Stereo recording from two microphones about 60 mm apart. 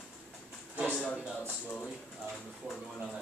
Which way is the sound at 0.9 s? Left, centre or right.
Left.